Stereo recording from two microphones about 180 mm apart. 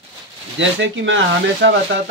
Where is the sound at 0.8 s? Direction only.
90° right.